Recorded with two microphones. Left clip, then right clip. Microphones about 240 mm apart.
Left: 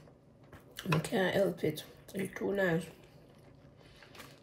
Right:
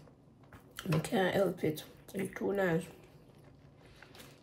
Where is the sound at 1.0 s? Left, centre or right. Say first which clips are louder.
Right 1 dB; centre.